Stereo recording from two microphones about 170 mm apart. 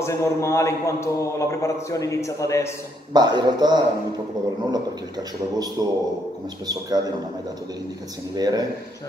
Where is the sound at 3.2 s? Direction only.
25° right (ahead or behind).